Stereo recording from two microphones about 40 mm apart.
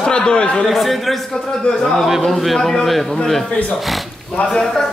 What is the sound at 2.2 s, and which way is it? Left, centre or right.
Speech, centre.